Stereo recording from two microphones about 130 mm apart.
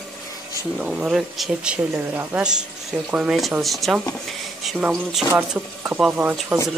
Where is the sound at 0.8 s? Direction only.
5° right (ahead or behind).